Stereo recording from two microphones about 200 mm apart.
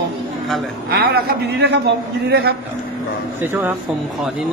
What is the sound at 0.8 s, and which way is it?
A man's voice, 50° right (ahead or behind).